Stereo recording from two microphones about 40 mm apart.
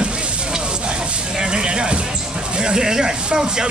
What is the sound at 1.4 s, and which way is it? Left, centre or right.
Speech, right.